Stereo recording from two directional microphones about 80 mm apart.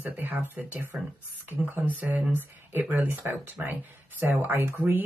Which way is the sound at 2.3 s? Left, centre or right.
Right.